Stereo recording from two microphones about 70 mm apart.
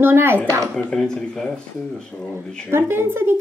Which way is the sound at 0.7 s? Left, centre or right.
Centre.